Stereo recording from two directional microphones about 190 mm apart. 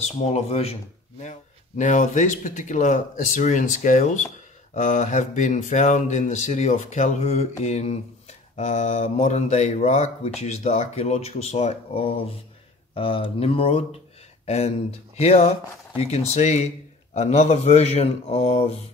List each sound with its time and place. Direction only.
0.0 s speech: 35° left (ahead or behind)
1.8 s speech: 40° left (ahead or behind)